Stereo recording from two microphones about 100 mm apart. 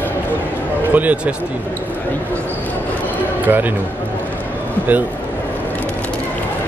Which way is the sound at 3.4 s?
20° right (ahead or behind).